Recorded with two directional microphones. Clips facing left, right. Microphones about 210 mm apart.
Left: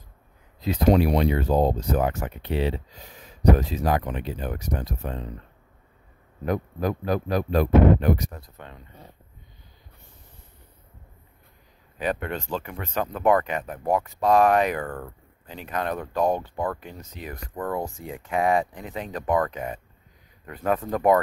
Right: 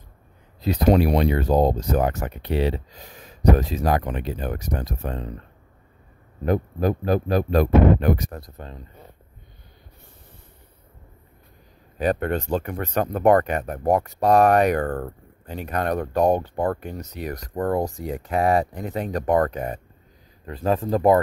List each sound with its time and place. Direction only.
0.6 s speech: 35° right (ahead or behind)
6.4 s speech: 30° right (ahead or behind)
12.0 s speech: 45° right (ahead or behind)
16.3 s speech: 40° right (ahead or behind)
16.9 s speech: 70° right (ahead or behind)
17.3 s speech: 40° right (ahead or behind)
20.4 s speech: 30° right (ahead or behind)